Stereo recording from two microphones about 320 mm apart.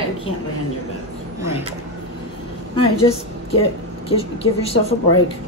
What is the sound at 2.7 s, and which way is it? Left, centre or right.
A woman's voice, centre.